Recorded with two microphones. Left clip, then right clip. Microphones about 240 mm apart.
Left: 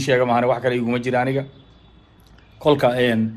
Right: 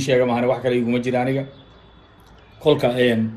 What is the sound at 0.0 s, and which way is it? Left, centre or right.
A man's voice, left.